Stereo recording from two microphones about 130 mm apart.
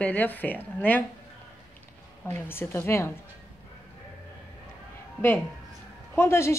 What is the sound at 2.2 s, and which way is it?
Speech, 15° left (ahead or behind).